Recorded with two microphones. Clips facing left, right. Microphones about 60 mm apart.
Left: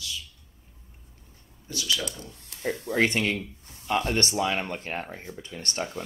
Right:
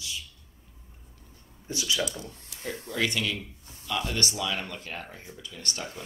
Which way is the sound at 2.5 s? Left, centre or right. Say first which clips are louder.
Left 6 dB; left.